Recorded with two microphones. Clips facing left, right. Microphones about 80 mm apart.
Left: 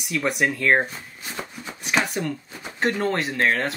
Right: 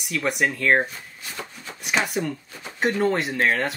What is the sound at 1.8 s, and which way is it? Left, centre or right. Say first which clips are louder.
Speech: even; centre.